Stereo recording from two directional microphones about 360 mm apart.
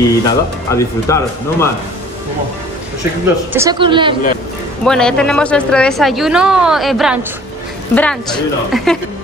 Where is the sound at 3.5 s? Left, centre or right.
Centre.